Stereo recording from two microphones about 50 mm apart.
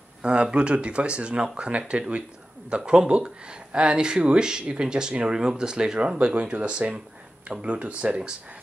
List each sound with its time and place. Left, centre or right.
0.2 s speech: centre